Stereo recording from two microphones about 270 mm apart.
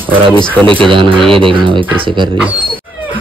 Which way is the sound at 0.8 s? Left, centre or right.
Centre.